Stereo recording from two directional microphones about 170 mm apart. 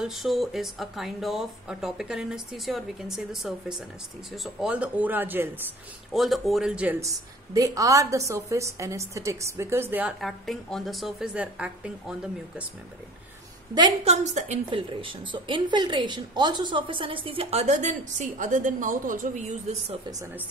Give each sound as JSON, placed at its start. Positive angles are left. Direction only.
{"t": 0.0, "sound": "a woman's voice", "side_deg": 0}
{"t": 6.1, "sound": "speech", "side_deg": 0}
{"t": 7.0, "sound": "a woman's voice", "side_deg": -20}
{"t": 10.2, "sound": "speech", "side_deg": 0}
{"t": 14.0, "sound": "a woman's voice", "side_deg": -40}